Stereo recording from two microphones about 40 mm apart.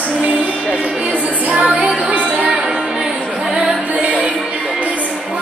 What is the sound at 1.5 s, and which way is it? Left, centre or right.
Music, right.